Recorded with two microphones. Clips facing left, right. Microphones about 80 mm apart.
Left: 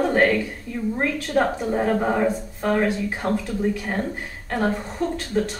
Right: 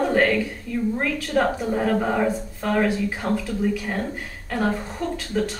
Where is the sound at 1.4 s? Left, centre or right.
Centre.